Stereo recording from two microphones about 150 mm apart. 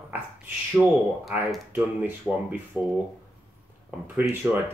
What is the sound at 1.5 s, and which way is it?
Speech, 10° right (ahead or behind).